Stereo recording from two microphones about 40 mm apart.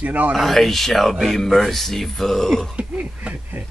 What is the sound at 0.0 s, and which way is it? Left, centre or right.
Speech, right.